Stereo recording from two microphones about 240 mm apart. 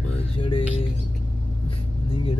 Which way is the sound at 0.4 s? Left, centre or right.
Left.